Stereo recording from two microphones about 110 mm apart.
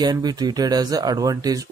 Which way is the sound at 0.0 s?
40° right (ahead or behind).